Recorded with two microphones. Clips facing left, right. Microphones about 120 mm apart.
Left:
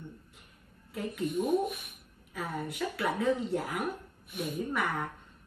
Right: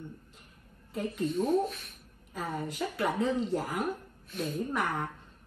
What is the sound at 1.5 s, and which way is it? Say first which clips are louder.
Speech: even; 10° left (ahead or behind).